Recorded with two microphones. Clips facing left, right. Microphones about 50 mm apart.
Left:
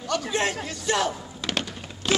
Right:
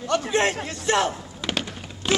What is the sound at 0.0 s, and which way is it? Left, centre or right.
A man's voice, right.